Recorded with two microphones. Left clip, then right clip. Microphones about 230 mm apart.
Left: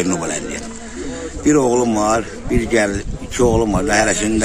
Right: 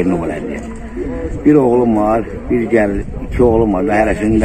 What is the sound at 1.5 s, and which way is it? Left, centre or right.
Speech, centre.